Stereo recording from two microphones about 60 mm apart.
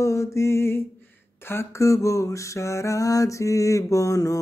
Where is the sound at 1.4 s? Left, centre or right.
Left.